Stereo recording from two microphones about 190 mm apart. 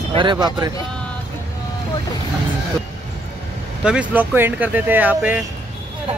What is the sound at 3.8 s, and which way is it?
Speech, 5° right (ahead or behind).